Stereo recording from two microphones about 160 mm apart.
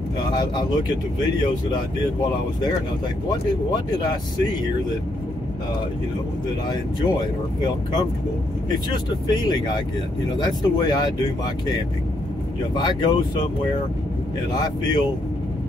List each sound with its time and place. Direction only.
0.4 s speech: 25° left (ahead or behind)
3.3 s speech: 25° left (ahead or behind)
8.6 s speech: 25° left (ahead or behind)
12.7 s speech: 25° left (ahead or behind)
14.5 s speech: 25° left (ahead or behind)